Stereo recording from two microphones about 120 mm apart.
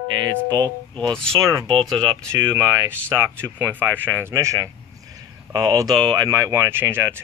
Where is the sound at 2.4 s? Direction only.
20° right (ahead or behind); by 6.2 s 40° right (ahead or behind).